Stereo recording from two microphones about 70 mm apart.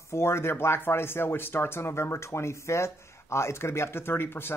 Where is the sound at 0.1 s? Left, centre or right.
Left.